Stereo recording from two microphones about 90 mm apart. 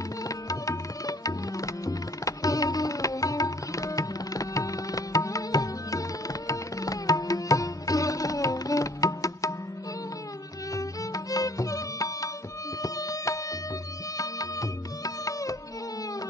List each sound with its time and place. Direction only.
0.5 s tabla: 40° left (ahead or behind)
10.7 s music: 40° left (ahead or behind)